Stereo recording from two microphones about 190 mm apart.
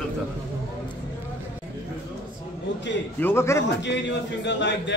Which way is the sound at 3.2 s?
10° left (ahead or behind).